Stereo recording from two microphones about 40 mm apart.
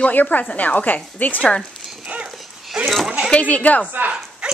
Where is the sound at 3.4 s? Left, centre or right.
Left.